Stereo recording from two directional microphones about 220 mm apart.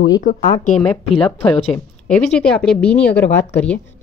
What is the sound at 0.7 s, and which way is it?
A woman's voice, centre (ahead or behind).